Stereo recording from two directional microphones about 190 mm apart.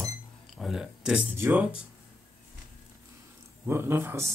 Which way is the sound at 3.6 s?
15° right (ahead or behind).